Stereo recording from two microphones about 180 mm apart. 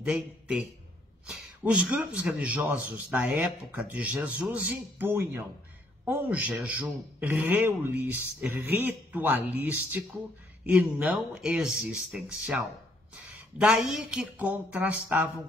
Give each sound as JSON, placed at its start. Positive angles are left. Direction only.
{"t": 0.0, "sound": "a man's voice", "side_deg": -5}
{"t": 13.6, "sound": "a man's voice", "side_deg": -5}